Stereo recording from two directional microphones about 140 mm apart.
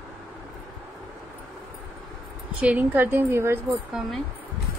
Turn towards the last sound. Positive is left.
turn(degrees=0)  # may be behind; listen again after turning